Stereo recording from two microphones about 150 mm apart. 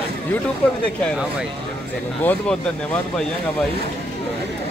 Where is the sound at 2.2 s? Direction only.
10° left (ahead or behind).